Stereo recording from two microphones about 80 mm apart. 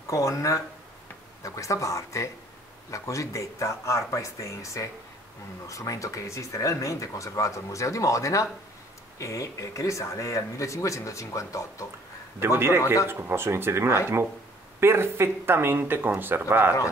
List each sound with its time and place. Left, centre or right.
0.1 s speech: left
12.4 s speech: right
12.8 s a man's voice: left
13.1 s speech: right